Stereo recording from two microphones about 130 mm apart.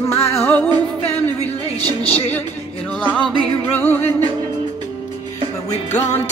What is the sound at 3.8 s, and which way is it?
Music, 15° left (ahead or behind).